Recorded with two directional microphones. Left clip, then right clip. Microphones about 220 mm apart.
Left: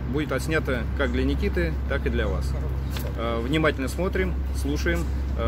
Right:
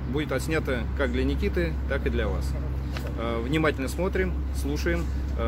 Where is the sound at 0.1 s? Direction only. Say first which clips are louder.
Left 2 dB; 5° right (ahead or behind).